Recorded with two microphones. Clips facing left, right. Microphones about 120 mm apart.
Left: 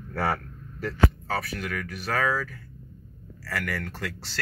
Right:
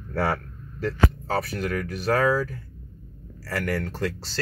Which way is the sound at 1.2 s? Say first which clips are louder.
Right 4 dB; 35° right (ahead or behind).